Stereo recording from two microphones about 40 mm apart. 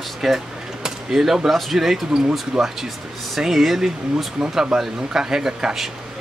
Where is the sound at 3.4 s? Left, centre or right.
Centre.